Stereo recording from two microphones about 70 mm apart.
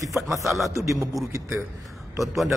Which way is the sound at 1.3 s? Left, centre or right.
Right.